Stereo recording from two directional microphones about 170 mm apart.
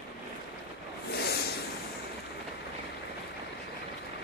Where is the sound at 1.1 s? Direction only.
70° left (ahead or behind).